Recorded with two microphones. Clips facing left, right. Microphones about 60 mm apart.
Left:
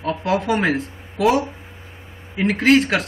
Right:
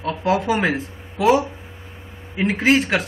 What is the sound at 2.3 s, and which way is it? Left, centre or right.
Speech, centre.